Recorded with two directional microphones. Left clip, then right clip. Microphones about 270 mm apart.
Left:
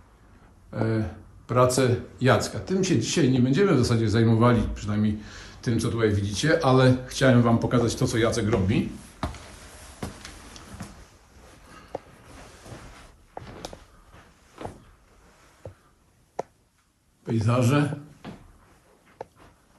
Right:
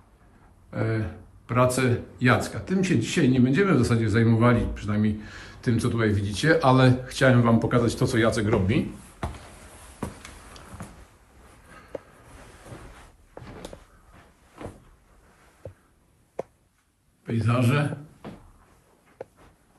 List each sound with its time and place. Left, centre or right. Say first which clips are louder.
0.7 s speech: left 1 dB; centre
11.7 s a sound: left 1 dB; centre
17.4 s a man's voice: left 1 dB; centre